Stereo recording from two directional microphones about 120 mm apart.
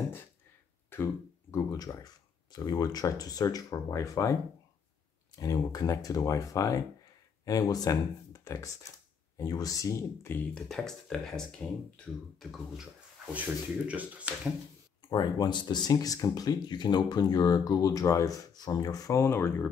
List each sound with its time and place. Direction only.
0.8 s speech: 20° left (ahead or behind)
10.5 s speech: 5° left (ahead or behind)
13.3 s speech: 15° right (ahead or behind)
15.0 s speech: 35° left (ahead or behind); by 19.7 s 20° left (ahead or behind)